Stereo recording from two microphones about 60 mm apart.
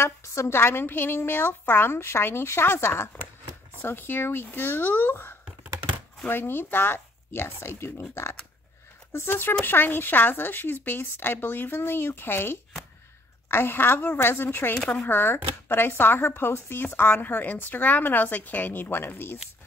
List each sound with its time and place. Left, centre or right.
0.0 s speech: left